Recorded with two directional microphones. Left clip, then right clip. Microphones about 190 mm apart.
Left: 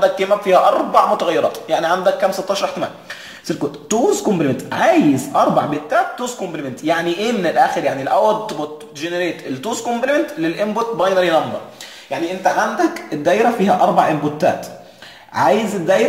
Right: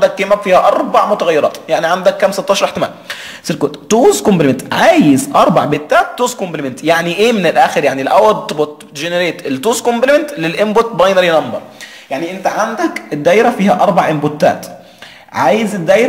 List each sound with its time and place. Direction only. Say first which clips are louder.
0.0 s a man's voice: right 4 dB; 20° right (ahead or behind); by 11.2 s 40° right (ahead or behind)
12.5 s speech: right 2 dB; 25° right (ahead or behind)
15.3 s speech: right 3 dB; 25° right (ahead or behind)